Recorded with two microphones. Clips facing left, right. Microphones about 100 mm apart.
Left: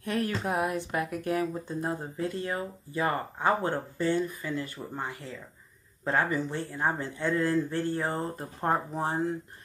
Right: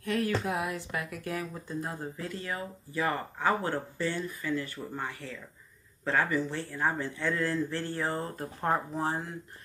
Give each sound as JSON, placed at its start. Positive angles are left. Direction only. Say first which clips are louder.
{"t": 0.5, "sound": "speech", "louder": "left 4 dB", "side_deg": 20}